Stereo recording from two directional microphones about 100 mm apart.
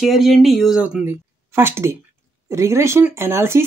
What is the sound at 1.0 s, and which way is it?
Speech, 25° right (ahead or behind).